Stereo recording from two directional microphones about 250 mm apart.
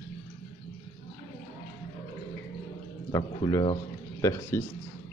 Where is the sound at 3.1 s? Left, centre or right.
Centre.